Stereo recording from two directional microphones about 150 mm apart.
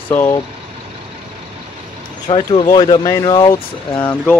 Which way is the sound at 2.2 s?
35° left (ahead or behind).